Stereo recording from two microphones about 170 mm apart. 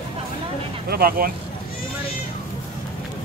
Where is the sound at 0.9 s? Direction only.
65° right (ahead or behind).